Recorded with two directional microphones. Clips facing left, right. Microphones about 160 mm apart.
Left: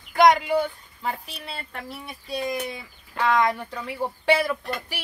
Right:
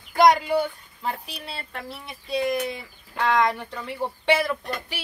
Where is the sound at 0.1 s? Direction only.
Centre (ahead or behind).